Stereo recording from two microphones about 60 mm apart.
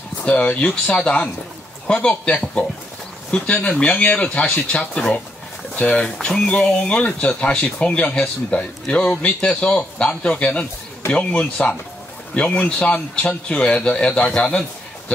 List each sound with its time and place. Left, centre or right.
0.2 s speech: left